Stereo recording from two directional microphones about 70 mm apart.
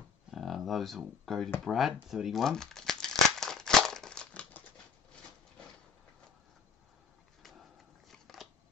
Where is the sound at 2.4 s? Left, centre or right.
Centre.